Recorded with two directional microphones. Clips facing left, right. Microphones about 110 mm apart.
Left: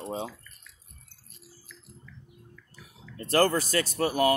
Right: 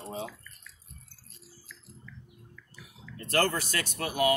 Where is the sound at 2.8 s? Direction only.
35° left (ahead or behind).